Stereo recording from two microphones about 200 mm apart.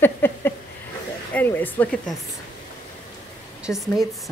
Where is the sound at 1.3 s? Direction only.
10° left (ahead or behind).